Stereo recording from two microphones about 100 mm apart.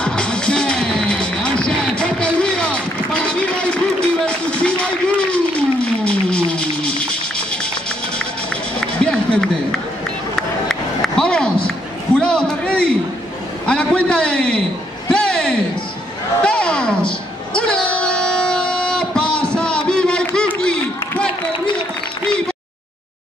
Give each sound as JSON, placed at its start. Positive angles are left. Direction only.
{"t": 0.0, "sound": "music", "side_deg": 10}
{"t": 9.0, "sound": "a sound", "side_deg": 10}
{"t": 17.6, "sound": "music", "side_deg": 10}